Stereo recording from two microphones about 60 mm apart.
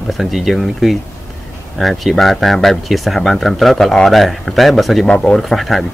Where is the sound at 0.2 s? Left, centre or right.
Centre.